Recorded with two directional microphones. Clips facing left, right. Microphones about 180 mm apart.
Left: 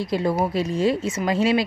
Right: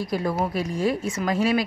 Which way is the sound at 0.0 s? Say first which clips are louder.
Left 3 dB; 25° left (ahead or behind).